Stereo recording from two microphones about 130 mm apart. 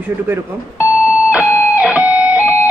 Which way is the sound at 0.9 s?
10° right (ahead or behind).